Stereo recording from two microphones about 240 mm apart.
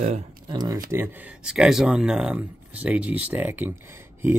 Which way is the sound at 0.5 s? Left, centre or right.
Centre.